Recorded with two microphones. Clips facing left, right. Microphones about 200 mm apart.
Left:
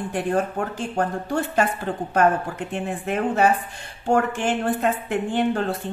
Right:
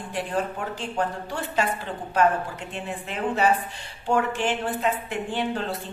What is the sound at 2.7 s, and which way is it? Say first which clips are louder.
A woman's voice: left 9 dB; 50° left (ahead or behind).